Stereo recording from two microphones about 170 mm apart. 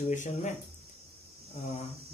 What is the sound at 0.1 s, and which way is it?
Speech, 45° left (ahead or behind).